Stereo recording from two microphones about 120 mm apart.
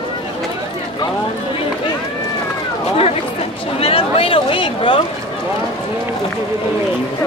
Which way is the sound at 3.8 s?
50° left (ahead or behind).